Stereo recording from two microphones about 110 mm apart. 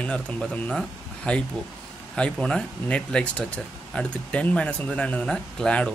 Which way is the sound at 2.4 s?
10° left (ahead or behind).